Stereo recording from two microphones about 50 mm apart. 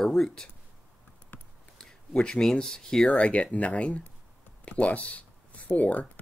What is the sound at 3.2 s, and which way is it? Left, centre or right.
Speech, left.